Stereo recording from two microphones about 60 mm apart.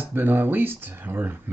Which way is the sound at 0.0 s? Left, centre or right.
Right.